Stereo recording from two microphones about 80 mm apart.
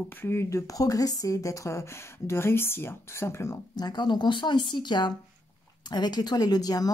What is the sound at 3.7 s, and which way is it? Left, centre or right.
Speech, left.